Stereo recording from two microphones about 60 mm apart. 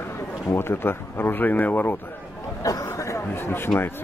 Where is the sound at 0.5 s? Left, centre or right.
Left.